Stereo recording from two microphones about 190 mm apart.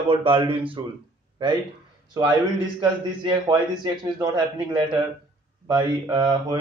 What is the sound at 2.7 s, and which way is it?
Speech, 25° right (ahead or behind).